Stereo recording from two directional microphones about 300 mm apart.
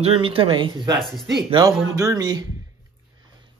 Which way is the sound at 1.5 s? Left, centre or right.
Centre.